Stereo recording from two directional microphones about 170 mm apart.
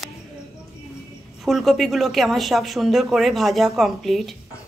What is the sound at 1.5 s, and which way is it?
Speech, centre (ahead or behind).